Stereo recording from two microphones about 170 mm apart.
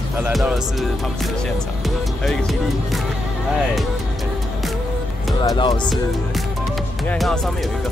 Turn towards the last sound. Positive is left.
turn(degrees=5)  # may be behind; listen again after turning